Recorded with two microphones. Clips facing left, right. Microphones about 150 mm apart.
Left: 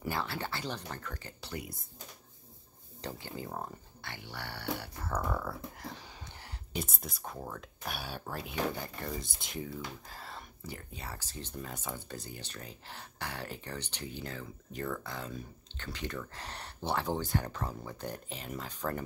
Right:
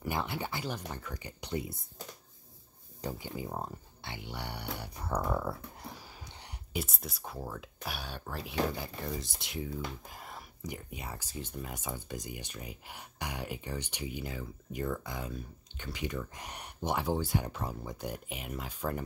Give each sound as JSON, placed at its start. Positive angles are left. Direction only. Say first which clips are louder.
{"t": 0.1, "sound": "speech", "louder": "right 2 dB", "side_deg": -15}
{"t": 3.0, "sound": "speech", "louder": "right 3 dB", "side_deg": -10}
{"t": 5.9, "sound": "a sound", "louder": "even", "side_deg": -5}
{"t": 6.7, "sound": "speech", "louder": "right 1 dB", "side_deg": -5}
{"t": 10.0, "sound": "speech", "louder": "even", "side_deg": -15}